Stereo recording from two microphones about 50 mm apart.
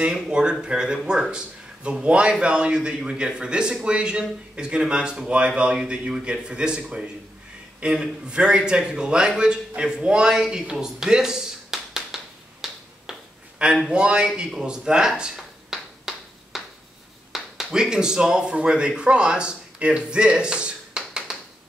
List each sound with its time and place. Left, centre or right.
0.0 s a man's voice: centre
7.8 s a man's voice: centre
12.6 s finger snapping: centre
13.8 s a man's voice: centre
15.7 s a sound: centre
17.3 s a man's voice: centre